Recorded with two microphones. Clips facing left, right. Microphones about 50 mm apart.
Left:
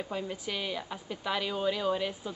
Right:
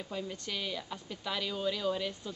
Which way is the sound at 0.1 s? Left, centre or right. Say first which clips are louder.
Left 3 dB; centre.